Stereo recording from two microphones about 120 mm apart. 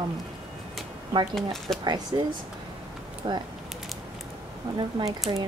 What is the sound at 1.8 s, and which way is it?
Speech, 35° right (ahead or behind).